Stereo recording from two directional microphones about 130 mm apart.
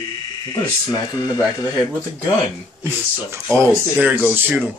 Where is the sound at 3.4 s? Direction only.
20° right (ahead or behind).